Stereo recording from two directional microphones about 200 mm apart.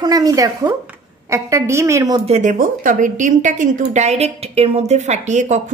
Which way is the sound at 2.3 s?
40° right (ahead or behind).